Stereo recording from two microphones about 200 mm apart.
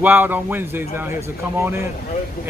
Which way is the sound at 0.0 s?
10° right (ahead or behind).